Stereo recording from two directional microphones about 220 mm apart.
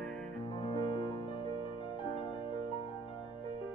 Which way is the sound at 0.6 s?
25° left (ahead or behind).